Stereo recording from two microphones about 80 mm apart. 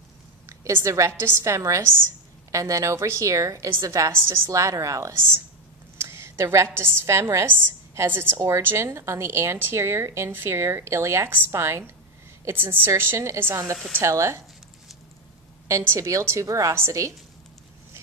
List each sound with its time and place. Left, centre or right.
0.5 s a woman's voice: right
15.7 s a woman's voice: right